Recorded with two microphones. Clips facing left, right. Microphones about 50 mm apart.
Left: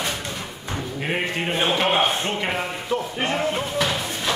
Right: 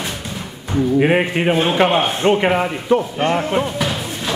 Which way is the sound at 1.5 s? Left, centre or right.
Centre.